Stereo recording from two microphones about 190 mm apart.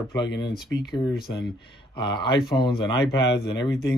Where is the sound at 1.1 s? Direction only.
55° left (ahead or behind).